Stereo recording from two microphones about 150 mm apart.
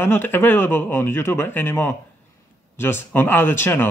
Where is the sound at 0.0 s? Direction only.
15° left (ahead or behind).